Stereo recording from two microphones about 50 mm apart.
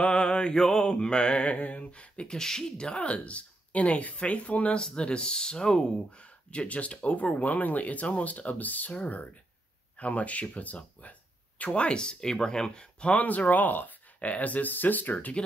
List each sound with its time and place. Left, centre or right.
0.0 s mantra: left
4.7 s speech: centre
6.0 s speech: left
13.1 s speech: left
15.1 s mantra: left